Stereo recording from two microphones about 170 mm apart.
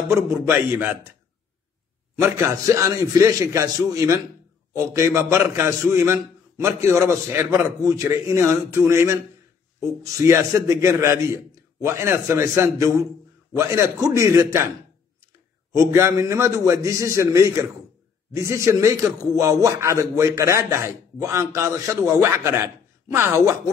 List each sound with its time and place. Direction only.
0.1 s a man's voice: 15° right (ahead or behind)
2.1 s a man's voice: 15° right (ahead or behind)
15.7 s a man's voice: 15° right (ahead or behind)